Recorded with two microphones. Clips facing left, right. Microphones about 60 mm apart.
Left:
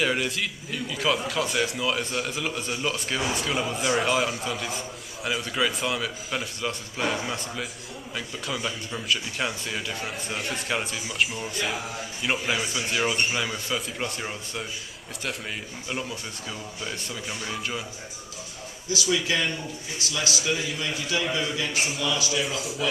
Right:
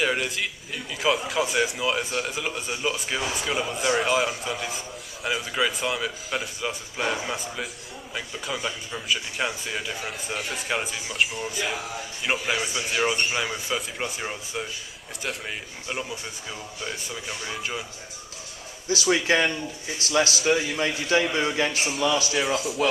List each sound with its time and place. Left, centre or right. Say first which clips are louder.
0.0 s a man's voice: even; centre
15.9 s a man's voice: right 1 dB; centre
18.9 s a man's voice: right 4 dB; right
20.4 s a man's voice: right 5 dB; right
21.1 s a man's voice: right 4 dB; right